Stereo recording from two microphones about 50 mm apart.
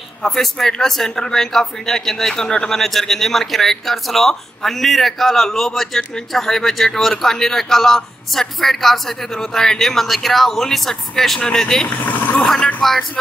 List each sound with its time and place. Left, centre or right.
0.2 s speech: centre
11.9 s speech: left
12.8 s speech: centre